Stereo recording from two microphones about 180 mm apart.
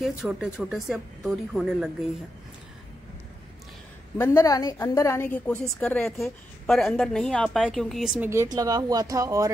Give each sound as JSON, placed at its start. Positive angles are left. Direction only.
{"t": 0.2, "sound": "a woman's voice", "side_deg": -5}
{"t": 4.2, "sound": "a woman's voice", "side_deg": 15}
{"t": 8.3, "sound": "speech", "side_deg": -15}